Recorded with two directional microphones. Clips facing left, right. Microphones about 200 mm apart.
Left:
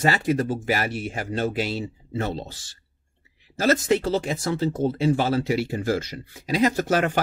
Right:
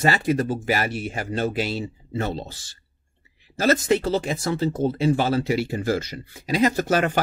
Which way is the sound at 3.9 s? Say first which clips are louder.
Right 1 dB; 5° right (ahead or behind).